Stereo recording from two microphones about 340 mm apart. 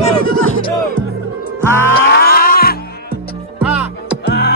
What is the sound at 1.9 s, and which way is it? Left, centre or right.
Music, left.